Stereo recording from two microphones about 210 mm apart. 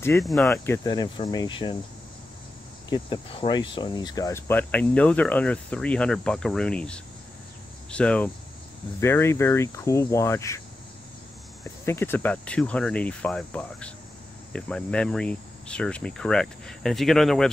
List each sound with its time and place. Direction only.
0.2 s speech: centre (ahead or behind)
0.8 s cricket: 20° left (ahead or behind)
2.9 s speech: 25° left (ahead or behind)
11.8 s speech: 10° left (ahead or behind)